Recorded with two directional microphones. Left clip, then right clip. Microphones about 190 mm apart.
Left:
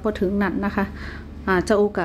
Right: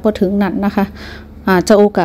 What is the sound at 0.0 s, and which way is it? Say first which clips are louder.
A woman's voice: right 8 dB; 30° right (ahead or behind).